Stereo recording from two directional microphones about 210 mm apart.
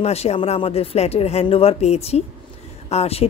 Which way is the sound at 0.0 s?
30° left (ahead or behind).